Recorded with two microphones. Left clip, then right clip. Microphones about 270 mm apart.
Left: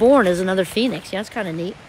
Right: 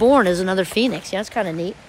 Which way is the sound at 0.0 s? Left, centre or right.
Centre.